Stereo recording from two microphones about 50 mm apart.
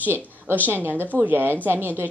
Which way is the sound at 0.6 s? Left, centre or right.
Right.